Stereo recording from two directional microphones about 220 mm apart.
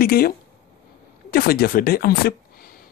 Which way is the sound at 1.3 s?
45° left (ahead or behind).